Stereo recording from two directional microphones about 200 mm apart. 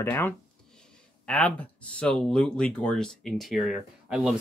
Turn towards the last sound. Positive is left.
turn(degrees=0)  # may be behind; listen again after turning